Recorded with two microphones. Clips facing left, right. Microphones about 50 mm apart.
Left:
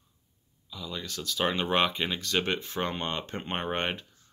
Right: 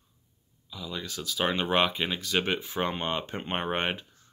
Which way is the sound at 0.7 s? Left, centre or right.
Centre.